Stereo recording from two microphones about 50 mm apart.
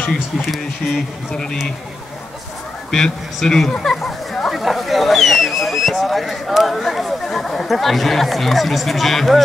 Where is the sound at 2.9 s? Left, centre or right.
Centre.